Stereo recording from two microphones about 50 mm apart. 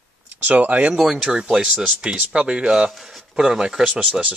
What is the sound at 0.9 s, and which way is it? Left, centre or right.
Speech, centre.